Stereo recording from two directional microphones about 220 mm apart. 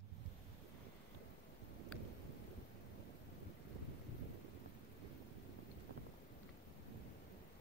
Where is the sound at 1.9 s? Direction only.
5° left (ahead or behind).